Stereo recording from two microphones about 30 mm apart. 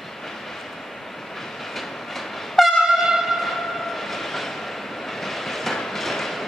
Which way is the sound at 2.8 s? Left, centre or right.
Centre.